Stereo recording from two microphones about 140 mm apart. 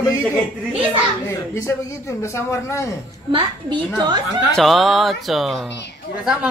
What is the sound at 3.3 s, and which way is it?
Speech, 35° right (ahead or behind).